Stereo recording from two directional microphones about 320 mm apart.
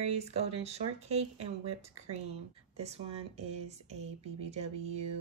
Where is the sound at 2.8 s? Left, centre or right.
Centre.